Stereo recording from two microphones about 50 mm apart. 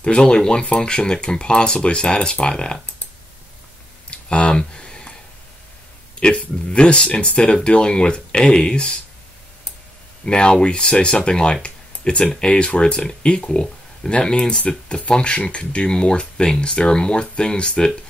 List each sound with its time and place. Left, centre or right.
0.0 s speech: centre
4.1 s a sound: centre
6.1 s speech: left
10.2 s speech: centre
11.6 s a sound: centre
12.4 s speech: left